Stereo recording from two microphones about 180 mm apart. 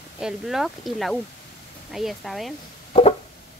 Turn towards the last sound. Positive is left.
turn(degrees=35)  # may be behind; listen again after turning